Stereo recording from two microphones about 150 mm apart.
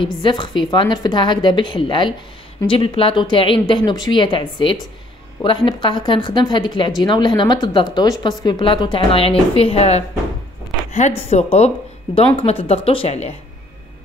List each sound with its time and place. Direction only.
0.0 s a woman's voice: 35° left (ahead or behind)